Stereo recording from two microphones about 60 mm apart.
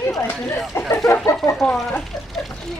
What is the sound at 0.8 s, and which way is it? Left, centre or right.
Speech, left.